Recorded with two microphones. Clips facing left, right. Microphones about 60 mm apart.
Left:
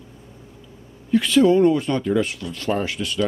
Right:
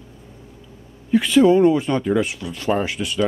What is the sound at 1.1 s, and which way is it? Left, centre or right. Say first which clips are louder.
Speech: right 2 dB; centre.